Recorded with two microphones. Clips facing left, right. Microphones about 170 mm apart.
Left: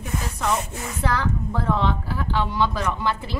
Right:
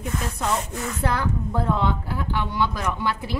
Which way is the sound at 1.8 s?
15° right (ahead or behind).